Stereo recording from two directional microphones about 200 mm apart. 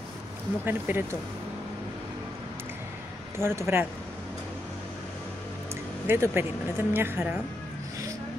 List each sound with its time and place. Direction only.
0.7 s speech: 10° right (ahead or behind)
3.3 s speech: 10° right (ahead or behind)
6.0 s speech: 10° right (ahead or behind)